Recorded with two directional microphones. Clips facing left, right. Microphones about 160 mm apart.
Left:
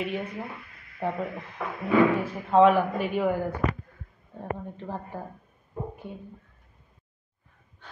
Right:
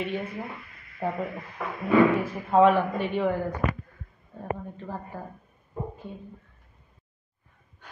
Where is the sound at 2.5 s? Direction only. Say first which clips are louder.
Left 1 dB; centre (ahead or behind).